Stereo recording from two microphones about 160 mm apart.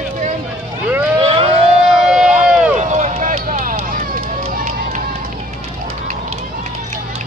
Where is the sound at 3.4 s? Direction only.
60° right (ahead or behind).